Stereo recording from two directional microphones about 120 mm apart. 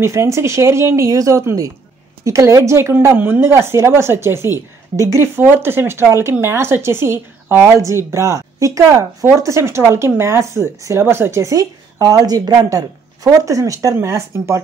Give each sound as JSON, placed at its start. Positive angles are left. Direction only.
{"t": 0.0, "sound": "a woman's voice", "side_deg": -25}